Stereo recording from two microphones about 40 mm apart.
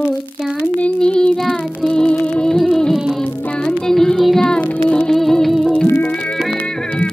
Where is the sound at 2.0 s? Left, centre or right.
Left.